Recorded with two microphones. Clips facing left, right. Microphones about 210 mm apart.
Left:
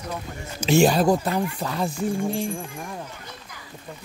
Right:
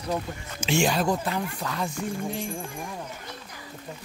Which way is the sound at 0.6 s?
40° left (ahead or behind).